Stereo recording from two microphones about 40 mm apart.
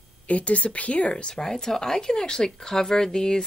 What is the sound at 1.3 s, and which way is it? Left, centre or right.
Speech, centre.